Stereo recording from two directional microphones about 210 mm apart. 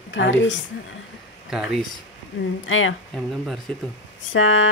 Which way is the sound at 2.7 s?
70° left (ahead or behind).